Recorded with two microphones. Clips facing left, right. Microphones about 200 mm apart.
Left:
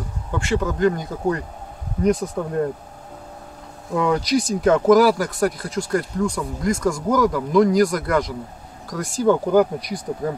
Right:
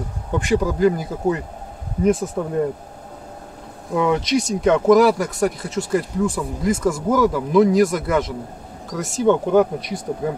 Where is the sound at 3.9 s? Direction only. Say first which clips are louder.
Right 1 dB; centre (ahead or behind).